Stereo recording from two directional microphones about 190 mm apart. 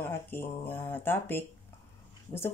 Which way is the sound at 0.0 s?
10° left (ahead or behind).